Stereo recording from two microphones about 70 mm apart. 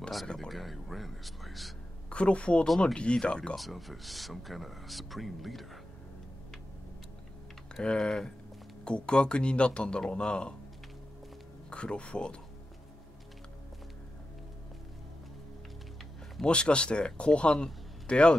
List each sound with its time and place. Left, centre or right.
0.3 s speech: centre
2.0 s speech: centre
3.5 s speech: centre
7.8 s speech: centre
11.7 s speech: centre
16.3 s speech: centre